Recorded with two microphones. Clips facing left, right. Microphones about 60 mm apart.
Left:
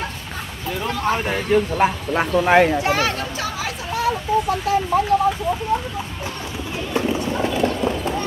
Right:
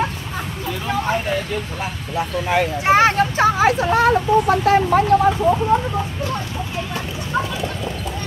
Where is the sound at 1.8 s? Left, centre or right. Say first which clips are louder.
Left 6 dB; left.